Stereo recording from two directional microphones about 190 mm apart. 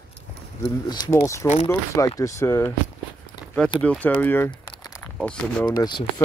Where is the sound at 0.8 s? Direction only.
20° left (ahead or behind).